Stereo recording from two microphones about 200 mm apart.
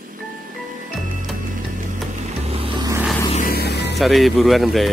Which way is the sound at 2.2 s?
30° right (ahead or behind).